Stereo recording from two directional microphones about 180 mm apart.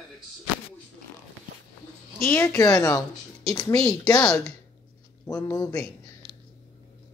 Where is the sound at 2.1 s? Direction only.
10° left (ahead or behind).